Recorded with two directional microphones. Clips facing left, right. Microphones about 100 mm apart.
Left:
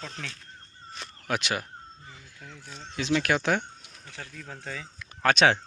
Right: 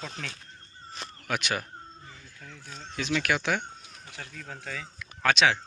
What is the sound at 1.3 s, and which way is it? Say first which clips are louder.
Speech: left 1 dB; 25° left (ahead or behind).